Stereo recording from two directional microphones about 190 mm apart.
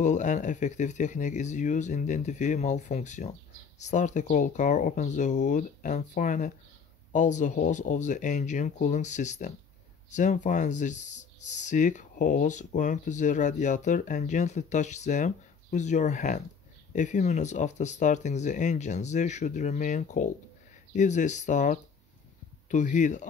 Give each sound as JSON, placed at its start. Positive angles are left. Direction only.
{"t": 0.0, "sound": "speech", "side_deg": 40}